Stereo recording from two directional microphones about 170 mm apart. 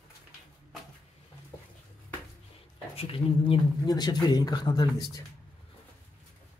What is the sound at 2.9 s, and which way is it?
Speech, 35° left (ahead or behind).